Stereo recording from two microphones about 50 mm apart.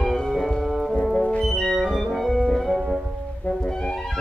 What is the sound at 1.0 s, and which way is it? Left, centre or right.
Music, centre.